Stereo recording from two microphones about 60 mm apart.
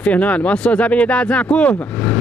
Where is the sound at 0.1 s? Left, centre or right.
Left.